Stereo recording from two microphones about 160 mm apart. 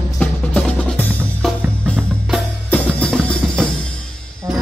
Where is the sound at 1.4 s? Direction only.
5° left (ahead or behind).